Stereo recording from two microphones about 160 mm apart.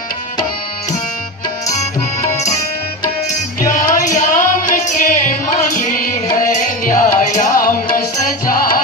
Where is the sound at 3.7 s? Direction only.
50° left (ahead or behind).